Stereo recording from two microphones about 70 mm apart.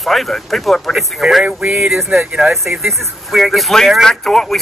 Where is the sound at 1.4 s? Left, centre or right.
Right.